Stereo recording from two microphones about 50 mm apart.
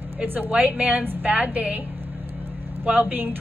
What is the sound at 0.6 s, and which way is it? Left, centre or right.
A woman's voice, right.